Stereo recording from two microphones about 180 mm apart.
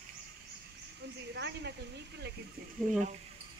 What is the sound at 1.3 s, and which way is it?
Speech, 70° right (ahead or behind).